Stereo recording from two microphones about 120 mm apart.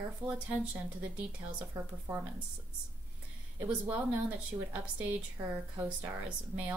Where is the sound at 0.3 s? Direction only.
10° right (ahead or behind).